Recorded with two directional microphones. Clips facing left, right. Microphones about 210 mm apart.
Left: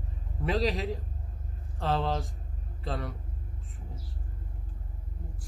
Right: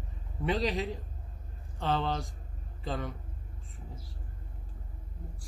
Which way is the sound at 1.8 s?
Centre (ahead or behind).